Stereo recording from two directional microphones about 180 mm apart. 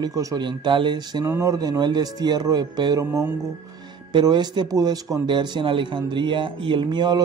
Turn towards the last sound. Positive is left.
turn(degrees=-25)  # may be behind; listen again after turning